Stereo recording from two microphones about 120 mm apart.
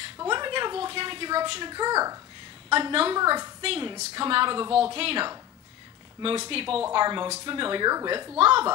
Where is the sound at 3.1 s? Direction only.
35° right (ahead or behind).